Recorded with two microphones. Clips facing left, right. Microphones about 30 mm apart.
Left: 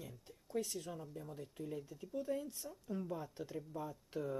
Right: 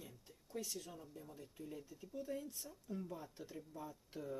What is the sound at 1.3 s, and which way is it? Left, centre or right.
Mechanisms, left.